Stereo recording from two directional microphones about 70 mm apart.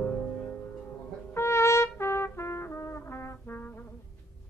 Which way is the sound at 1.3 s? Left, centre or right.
Left.